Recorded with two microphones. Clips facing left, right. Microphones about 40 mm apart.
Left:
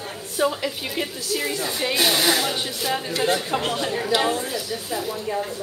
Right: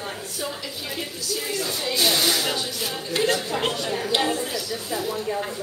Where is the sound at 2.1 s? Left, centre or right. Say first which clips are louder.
Left 1 dB; centre.